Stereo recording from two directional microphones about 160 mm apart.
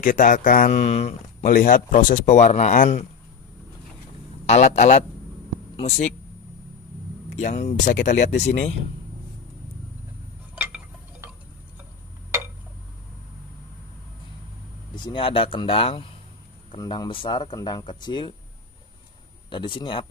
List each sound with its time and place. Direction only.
0.0 s speech: 55° left (ahead or behind)
1.4 s speech: 60° left (ahead or behind)
4.5 s speech: 50° left (ahead or behind)
7.3 s speech: 45° left (ahead or behind)
10.5 s a sound: 10° right (ahead or behind)
15.0 s speech: 35° left (ahead or behind)
19.5 s speech: 30° left (ahead or behind)